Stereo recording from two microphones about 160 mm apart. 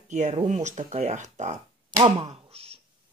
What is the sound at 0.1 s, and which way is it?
Speech, 45° right (ahead or behind).